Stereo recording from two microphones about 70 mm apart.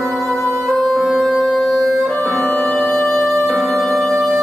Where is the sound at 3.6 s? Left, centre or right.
Centre.